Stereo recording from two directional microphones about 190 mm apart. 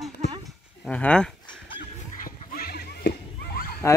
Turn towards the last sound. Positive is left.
turn(degrees=15)  # may be behind; listen again after turning